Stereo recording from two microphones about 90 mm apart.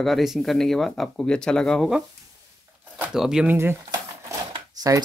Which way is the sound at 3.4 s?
25° right (ahead or behind).